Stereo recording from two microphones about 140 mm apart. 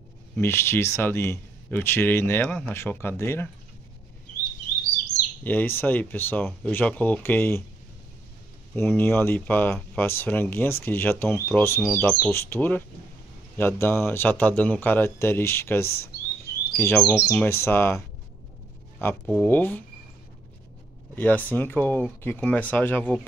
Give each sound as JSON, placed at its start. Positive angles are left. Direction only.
{"t": 0.4, "sound": "speech", "side_deg": 20}
{"t": 5.4, "sound": "speech", "side_deg": 10}
{"t": 8.7, "sound": "speech", "side_deg": 15}
{"t": 21.1, "sound": "speech", "side_deg": 10}